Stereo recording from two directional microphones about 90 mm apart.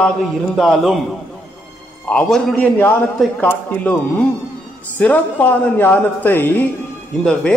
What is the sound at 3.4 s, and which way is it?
Speech, 20° left (ahead or behind).